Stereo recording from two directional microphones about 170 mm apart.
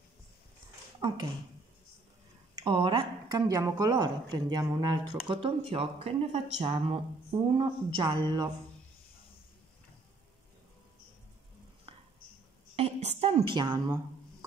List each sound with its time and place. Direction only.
1.0 s speech: 25° right (ahead or behind)
2.5 s speech: 30° right (ahead or behind)
12.7 s a sound: 35° right (ahead or behind)